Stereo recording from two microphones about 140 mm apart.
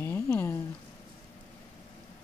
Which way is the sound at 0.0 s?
15° left (ahead or behind).